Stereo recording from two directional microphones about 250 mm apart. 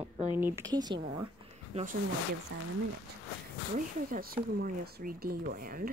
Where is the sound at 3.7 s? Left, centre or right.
Right.